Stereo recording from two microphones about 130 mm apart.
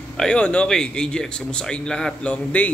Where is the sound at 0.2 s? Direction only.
10° left (ahead or behind).